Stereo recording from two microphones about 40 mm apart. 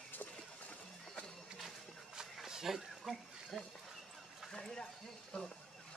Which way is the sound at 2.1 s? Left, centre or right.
Centre.